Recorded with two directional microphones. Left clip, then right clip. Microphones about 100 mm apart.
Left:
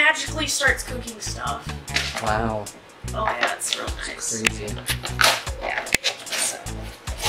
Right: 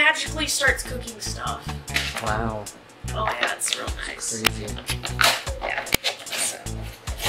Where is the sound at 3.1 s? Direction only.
15° right (ahead or behind).